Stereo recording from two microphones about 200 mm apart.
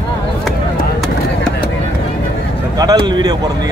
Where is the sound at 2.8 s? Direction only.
20° right (ahead or behind).